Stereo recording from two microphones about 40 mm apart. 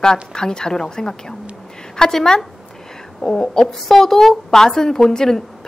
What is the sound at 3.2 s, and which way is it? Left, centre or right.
A child's voice, centre.